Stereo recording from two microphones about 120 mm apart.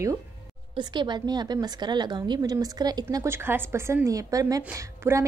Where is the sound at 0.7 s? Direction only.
40° right (ahead or behind).